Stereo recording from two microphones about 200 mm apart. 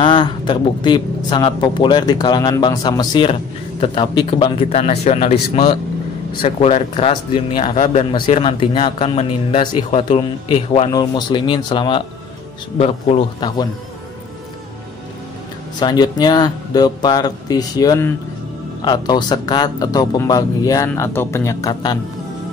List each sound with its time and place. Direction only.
0.0 s speech: 25° left (ahead or behind)
7.7 s a man's voice: 35° left (ahead or behind)
15.8 s speech: 20° left (ahead or behind)